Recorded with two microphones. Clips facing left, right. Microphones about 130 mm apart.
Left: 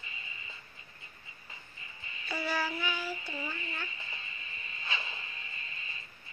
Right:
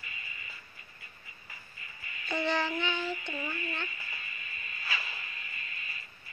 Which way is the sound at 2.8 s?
10° left (ahead or behind).